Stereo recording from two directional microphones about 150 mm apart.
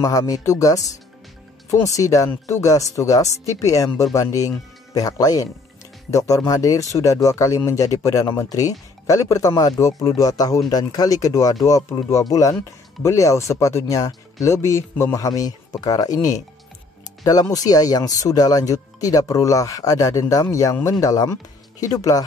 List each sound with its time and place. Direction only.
0.0 s speech: 20° left (ahead or behind)